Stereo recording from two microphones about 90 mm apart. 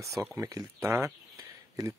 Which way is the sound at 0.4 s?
40° right (ahead or behind).